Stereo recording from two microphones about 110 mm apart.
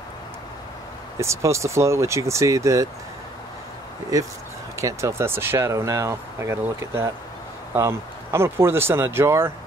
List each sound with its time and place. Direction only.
1.1 s speech: 25° right (ahead or behind)
4.7 s speech: 25° right (ahead or behind)